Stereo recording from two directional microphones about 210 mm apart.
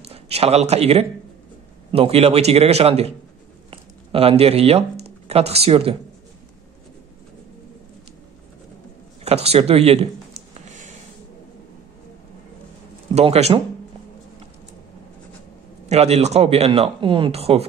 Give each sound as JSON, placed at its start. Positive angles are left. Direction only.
{"t": 0.1, "sound": "speech", "side_deg": -30}
{"t": 3.7, "sound": "a sound", "side_deg": -25}
{"t": 5.0, "sound": "speech", "side_deg": -30}
{"t": 9.2, "sound": "speech", "side_deg": -30}
{"t": 10.5, "sound": "a sound", "side_deg": -35}
{"t": 13.1, "sound": "speech", "side_deg": -30}
{"t": 15.9, "sound": "speech", "side_deg": -30}